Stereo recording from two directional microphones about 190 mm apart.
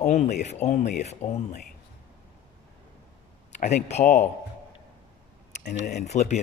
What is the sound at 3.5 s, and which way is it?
Speech, 35° left (ahead or behind).